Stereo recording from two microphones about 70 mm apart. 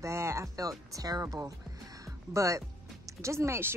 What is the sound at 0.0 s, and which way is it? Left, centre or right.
Speech, right.